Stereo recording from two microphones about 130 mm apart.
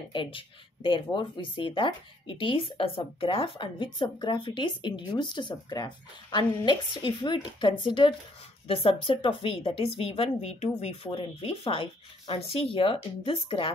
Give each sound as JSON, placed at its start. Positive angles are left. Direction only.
{"t": 0.1, "sound": "a woman's voice", "side_deg": 40}
{"t": 11.1, "sound": "a woman's voice", "side_deg": 45}